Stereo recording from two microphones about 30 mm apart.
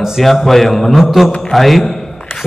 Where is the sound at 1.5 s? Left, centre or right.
Centre.